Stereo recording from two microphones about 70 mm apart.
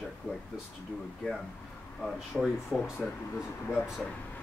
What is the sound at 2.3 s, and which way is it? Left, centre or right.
Speech, centre.